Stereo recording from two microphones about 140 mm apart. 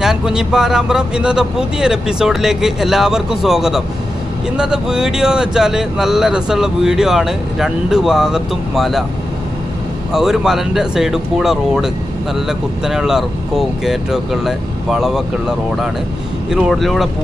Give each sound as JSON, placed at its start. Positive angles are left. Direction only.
{"t": 0.0, "sound": "speech", "side_deg": -5}
{"t": 10.1, "sound": "speech", "side_deg": -5}